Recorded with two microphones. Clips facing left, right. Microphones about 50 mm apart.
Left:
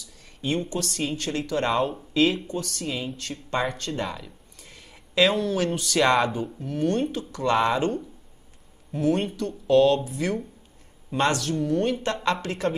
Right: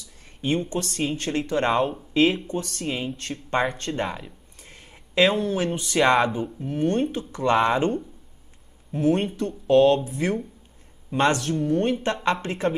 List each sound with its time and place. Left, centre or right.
0.0 s speech: right
1.7 s speech: centre
2.4 s speech: right
3.7 s a sound: right
5.4 s speech: right
7.6 s speech: centre
8.9 s speech: right